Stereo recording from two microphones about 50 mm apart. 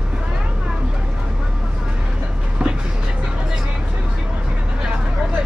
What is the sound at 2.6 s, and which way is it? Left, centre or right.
Vehicle, centre.